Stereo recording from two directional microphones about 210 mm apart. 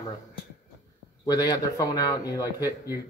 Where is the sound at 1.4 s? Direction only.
20° left (ahead or behind).